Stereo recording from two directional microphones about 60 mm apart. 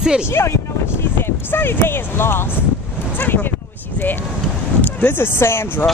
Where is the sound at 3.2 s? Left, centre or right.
Left.